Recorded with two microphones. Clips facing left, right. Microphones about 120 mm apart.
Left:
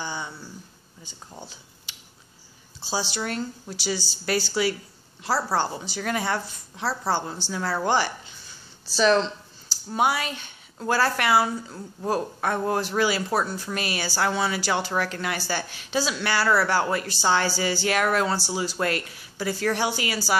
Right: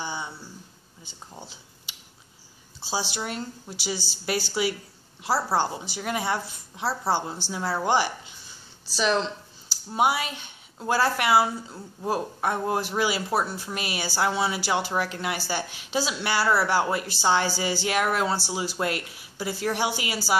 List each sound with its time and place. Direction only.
0.0 s a sound: 15° right (ahead or behind)
2.9 s a woman's voice: 15° right (ahead or behind)
9.9 s a woman's voice: 20° right (ahead or behind)